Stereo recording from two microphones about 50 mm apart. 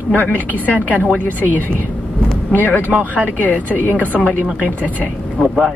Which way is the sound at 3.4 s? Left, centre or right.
Left.